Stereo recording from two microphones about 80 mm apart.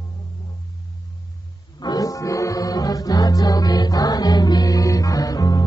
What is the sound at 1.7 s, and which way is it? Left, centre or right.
Music, left.